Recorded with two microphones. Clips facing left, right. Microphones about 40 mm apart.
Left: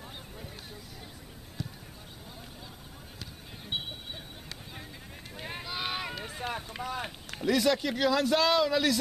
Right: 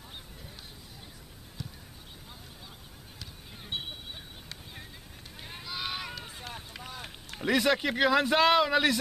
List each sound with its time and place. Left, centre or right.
1.6 s basketball bounce: centre
5.6 s boat: centre
6.8 s vehicle: left
7.4 s a man's voice: right